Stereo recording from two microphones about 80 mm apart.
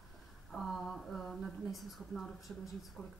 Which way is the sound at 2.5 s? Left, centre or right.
Centre.